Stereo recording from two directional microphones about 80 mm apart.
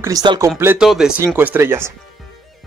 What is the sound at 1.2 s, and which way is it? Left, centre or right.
Speech, right.